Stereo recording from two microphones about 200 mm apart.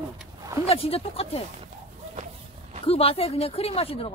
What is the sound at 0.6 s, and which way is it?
Speech, 30° left (ahead or behind).